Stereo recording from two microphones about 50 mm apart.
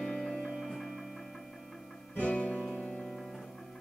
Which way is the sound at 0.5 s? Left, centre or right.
Centre.